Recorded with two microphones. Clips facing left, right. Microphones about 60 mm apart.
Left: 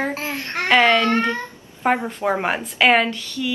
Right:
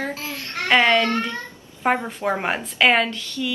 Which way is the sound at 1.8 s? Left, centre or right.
Centre.